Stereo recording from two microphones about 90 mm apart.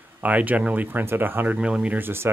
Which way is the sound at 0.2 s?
15° right (ahead or behind).